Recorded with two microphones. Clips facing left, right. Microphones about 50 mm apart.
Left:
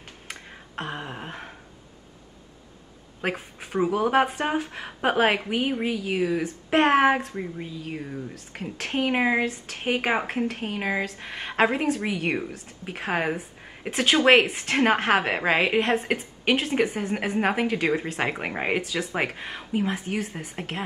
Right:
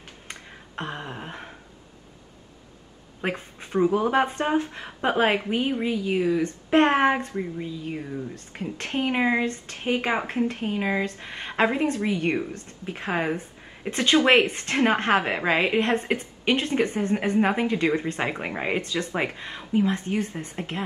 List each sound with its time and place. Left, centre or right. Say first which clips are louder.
0.3 s a sound: left 1 dB; centre
3.2 s speech: even; centre
9.8 s speech: left 1 dB; left